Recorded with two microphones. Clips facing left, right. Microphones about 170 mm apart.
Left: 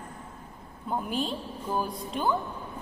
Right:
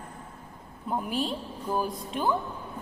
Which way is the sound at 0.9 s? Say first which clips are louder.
Right 1 dB; centre (ahead or behind).